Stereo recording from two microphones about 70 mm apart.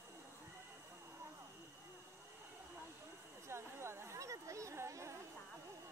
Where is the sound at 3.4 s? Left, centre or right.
Right.